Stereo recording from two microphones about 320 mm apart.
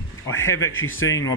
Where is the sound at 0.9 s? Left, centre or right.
Left.